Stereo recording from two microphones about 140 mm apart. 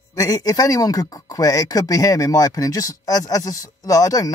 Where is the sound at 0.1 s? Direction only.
25° left (ahead or behind).